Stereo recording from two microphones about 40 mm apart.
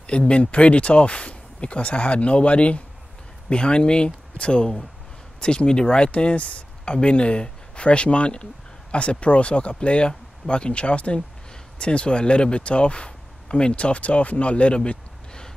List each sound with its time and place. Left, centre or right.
0.0 s speech: left